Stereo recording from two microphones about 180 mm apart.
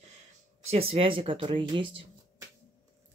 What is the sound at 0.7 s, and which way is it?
Speech, 35° right (ahead or behind).